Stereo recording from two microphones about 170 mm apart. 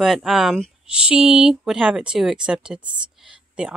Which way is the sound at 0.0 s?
Centre (ahead or behind).